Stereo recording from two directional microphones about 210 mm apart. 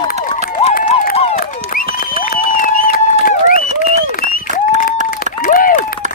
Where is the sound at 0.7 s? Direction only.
35° left (ahead or behind).